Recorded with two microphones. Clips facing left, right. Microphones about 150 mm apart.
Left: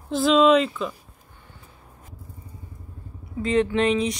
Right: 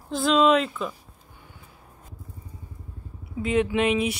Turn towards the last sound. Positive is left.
turn(degrees=-5)  # may be behind; listen again after turning